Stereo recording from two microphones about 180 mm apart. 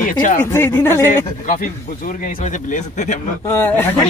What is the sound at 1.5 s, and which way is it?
Speech, 45° left (ahead or behind).